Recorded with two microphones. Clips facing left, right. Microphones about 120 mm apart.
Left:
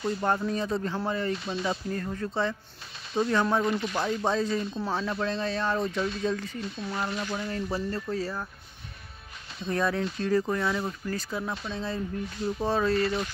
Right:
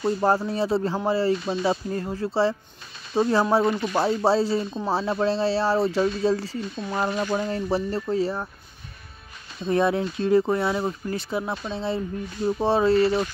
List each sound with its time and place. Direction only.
0.0 s speech: 35° right (ahead or behind)
9.7 s speech: 20° right (ahead or behind)